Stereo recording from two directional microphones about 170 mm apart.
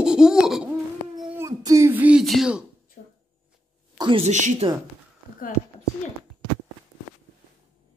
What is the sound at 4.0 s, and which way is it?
Speech, 30° right (ahead or behind).